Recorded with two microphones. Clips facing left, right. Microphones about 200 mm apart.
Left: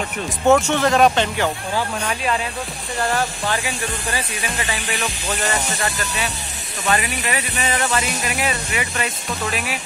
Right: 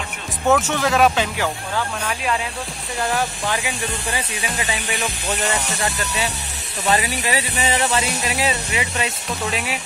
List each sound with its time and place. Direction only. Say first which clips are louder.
0.5 s speech: left 3 dB; centre (ahead or behind)
3.0 s speech: left 1 dB; centre (ahead or behind)
5.0 s music: right 1 dB; 15° right (ahead or behind)
6.9 s speech: right 1 dB; 25° right (ahead or behind)